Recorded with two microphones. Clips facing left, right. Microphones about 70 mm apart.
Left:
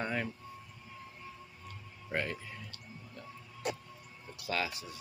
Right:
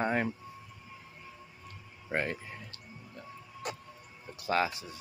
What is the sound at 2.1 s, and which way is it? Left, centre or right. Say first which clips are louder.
Speech: right 3 dB; right.